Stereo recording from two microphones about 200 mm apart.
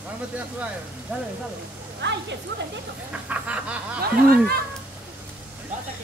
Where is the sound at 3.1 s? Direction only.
5° right (ahead or behind).